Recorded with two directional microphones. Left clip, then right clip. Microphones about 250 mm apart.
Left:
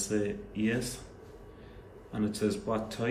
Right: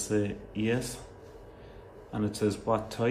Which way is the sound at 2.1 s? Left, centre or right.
Centre.